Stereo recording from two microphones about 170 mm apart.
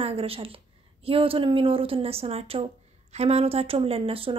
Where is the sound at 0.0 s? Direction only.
35° right (ahead or behind).